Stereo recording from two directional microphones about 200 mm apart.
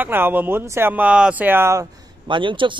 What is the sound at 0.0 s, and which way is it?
Speech, 10° right (ahead or behind).